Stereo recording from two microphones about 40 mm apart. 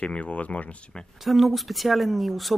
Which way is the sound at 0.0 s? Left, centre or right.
Left.